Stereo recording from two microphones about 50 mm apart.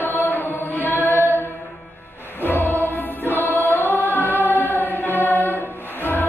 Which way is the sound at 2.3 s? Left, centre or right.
Left.